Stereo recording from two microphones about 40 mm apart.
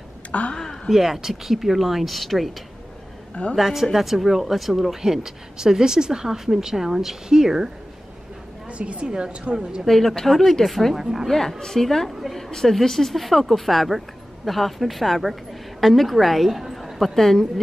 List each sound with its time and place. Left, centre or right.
0.3 s a woman's voice: left
0.8 s speech: centre
3.5 s speech: centre
8.6 s a woman's voice: right
9.8 s a woman's voice: centre
11.0 s speech: centre
11.2 s a woman's voice: centre
16.6 s a sound: centre
17.0 s a woman's voice: centre